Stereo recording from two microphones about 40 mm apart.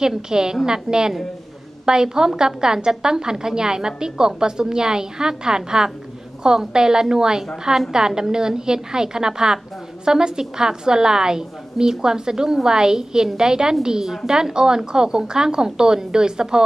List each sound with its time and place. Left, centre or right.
0.0 s a woman's voice: centre